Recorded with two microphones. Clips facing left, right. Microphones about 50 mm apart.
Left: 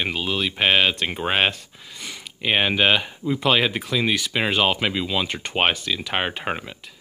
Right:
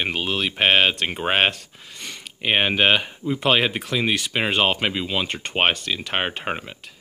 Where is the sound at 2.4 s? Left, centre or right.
Right.